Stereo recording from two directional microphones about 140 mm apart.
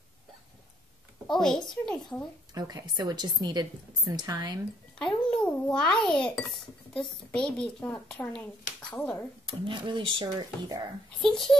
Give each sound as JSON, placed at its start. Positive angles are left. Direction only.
{"t": 1.2, "sound": "a child's voice", "side_deg": 5}
{"t": 2.5, "sound": "a woman's voice", "side_deg": -25}
{"t": 4.9, "sound": "a child's voice", "side_deg": 5}
{"t": 9.5, "sound": "speech", "side_deg": -35}
{"t": 11.1, "sound": "a child's voice", "side_deg": 5}